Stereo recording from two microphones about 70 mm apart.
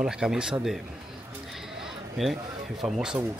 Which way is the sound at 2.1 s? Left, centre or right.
Centre.